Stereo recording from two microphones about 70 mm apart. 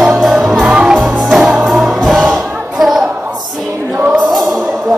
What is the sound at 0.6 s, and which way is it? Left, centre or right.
Music, centre.